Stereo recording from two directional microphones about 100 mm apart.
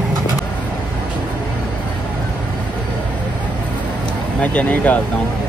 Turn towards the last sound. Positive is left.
turn(degrees=15)  # may be behind; listen again after turning